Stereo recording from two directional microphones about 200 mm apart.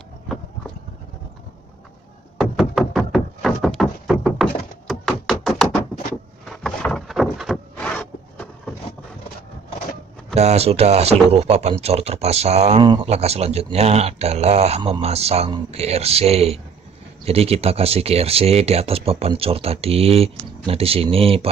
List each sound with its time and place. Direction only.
2.3 s knock: centre (ahead or behind)
3.1 s a sound: centre (ahead or behind)
10.3 s speech: 35° right (ahead or behind)